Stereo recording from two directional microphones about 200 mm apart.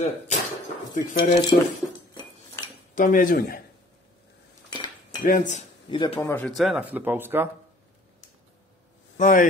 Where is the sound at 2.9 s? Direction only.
40° left (ahead or behind).